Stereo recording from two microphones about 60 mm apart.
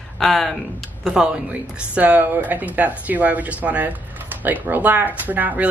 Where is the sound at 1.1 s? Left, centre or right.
Centre.